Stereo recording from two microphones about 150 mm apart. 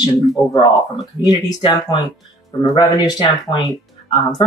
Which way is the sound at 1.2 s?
30° left (ahead or behind).